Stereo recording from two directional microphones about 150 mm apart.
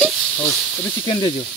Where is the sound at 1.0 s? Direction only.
30° left (ahead or behind).